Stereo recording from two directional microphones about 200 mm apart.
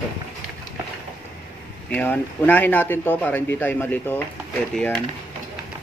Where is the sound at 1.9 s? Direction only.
10° left (ahead or behind).